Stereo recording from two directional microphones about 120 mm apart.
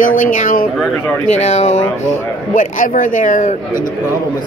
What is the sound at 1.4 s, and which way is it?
Speech, 65° left (ahead or behind).